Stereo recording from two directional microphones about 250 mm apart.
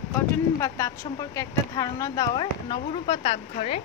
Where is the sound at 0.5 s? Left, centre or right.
Centre.